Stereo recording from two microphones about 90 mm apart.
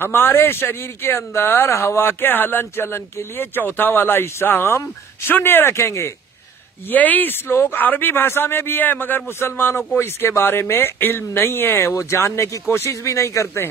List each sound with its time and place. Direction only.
0.0 s speech: 25° left (ahead or behind)
6.9 s speech: 20° left (ahead or behind); by 13.7 s 35° left (ahead or behind)